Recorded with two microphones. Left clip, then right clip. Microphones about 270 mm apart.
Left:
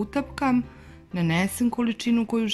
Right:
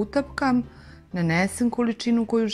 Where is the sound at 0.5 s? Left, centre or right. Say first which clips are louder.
Right 1 dB; left.